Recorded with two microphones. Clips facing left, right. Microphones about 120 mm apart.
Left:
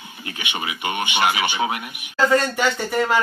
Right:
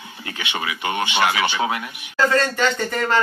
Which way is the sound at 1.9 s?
15° left (ahead or behind).